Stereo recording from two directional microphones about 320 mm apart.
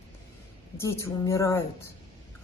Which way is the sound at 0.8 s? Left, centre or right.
Centre.